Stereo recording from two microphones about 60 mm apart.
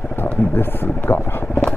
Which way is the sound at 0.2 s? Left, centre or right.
Left.